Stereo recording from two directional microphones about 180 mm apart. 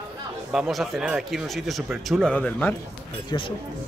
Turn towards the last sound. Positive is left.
turn(degrees=30)  # may be behind; listen again after turning